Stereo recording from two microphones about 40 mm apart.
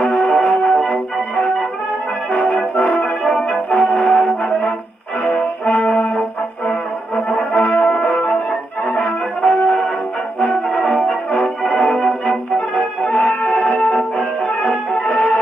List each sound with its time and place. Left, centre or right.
0.0 s music: centre
0.3 s music: left
0.8 s music: left
2.3 s brass instrument: left
3.5 s brass instrument: left
3.9 s brass instrument: centre
4.5 s brass instrument: left
5.2 s music: left
7.2 s brass instrument: left
9.4 s music: left
10.8 s brass instrument: centre
11.7 s music: left
13.3 s music: left